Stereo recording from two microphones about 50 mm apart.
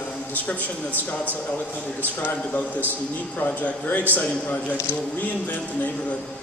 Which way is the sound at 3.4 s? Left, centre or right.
Left.